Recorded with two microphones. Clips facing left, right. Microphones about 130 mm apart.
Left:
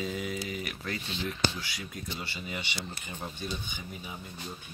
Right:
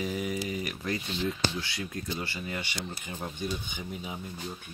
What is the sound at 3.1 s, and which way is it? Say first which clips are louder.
Speech: right 2 dB; 5° right (ahead or behind).